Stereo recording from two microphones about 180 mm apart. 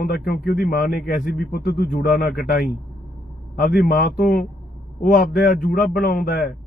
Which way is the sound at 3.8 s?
55° left (ahead or behind).